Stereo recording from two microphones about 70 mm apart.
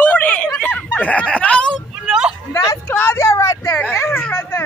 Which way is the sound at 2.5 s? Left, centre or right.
Left.